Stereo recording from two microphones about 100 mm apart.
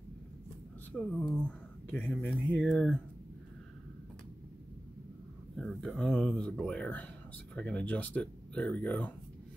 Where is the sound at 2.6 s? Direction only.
5° left (ahead or behind).